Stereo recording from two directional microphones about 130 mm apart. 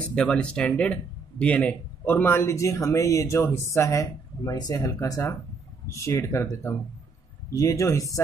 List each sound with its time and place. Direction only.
0.1 s speech: 10° left (ahead or behind); by 8.2 s 25° left (ahead or behind)